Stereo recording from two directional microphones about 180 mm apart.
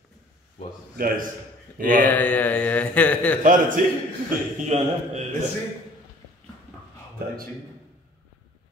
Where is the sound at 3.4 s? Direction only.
50° right (ahead or behind).